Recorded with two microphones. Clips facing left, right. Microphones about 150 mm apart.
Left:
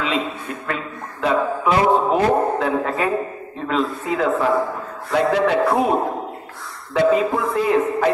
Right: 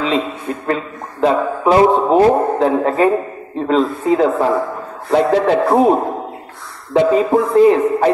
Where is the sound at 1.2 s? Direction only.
35° right (ahead or behind).